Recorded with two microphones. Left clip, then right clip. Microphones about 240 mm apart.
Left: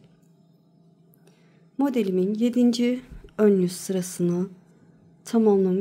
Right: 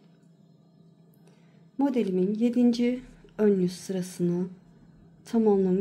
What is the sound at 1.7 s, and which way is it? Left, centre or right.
A woman's voice, centre.